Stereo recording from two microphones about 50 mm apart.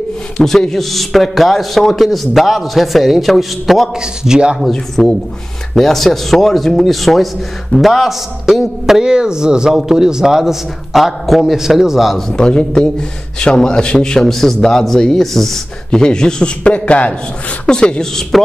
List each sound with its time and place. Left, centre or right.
0.4 s a man's voice: centre
4.0 s a man's voice: centre
4.6 s a man's voice: centre
12.3 s a man's voice: centre
15.9 s a man's voice: centre